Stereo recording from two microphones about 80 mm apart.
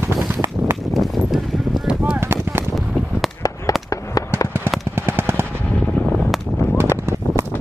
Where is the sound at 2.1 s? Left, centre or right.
Right.